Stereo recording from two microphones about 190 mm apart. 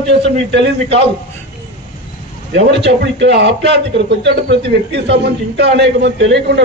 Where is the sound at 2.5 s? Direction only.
65° right (ahead or behind).